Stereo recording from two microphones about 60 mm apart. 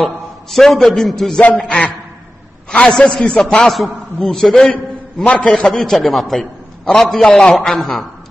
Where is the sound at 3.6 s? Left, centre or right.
Centre.